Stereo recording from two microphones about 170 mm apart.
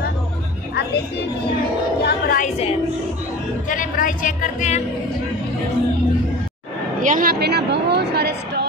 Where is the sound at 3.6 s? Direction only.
50° left (ahead or behind).